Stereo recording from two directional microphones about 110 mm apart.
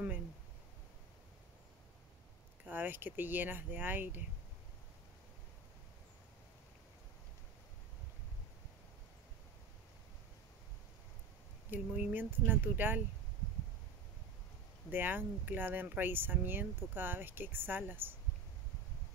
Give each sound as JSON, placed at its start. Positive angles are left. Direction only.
{"t": 2.6, "sound": "speech", "side_deg": -15}
{"t": 11.7, "sound": "speech", "side_deg": -15}
{"t": 14.9, "sound": "speech", "side_deg": -15}